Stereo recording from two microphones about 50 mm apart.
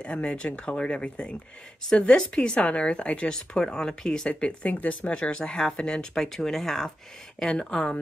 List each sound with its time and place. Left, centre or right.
0.0 s a woman's voice: left
4.3 s a woman's voice: left